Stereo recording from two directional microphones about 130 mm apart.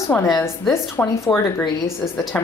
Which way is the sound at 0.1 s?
20° left (ahead or behind).